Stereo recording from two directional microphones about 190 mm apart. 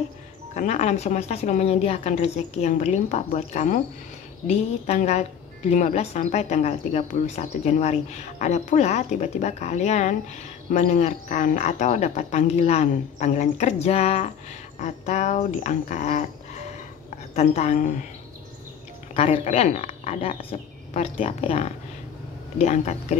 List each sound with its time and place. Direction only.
0.6 s a woman's voice: 40° left (ahead or behind)
17.4 s a woman's voice: 40° left (ahead or behind)
19.1 s a woman's voice: 30° left (ahead or behind)